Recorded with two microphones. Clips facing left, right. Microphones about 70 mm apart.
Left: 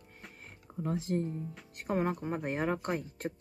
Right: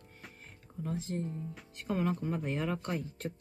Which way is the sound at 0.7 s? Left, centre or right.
Left.